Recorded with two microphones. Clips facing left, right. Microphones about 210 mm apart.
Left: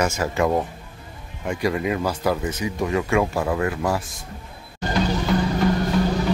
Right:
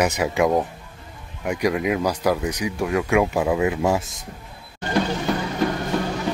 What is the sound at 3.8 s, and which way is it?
Speech, 20° right (ahead or behind).